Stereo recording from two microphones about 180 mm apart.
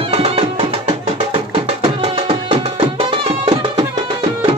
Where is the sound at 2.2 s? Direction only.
30° right (ahead or behind).